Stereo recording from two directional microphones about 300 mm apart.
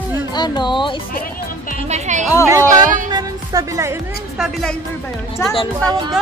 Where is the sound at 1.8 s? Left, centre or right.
Right.